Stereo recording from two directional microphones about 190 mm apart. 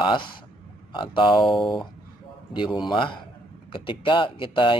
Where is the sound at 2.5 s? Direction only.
25° left (ahead or behind).